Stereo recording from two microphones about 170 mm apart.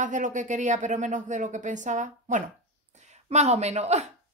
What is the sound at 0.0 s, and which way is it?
Speech, 50° right (ahead or behind).